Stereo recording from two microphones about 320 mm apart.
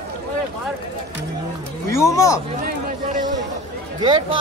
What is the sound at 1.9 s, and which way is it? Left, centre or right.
Speech, centre.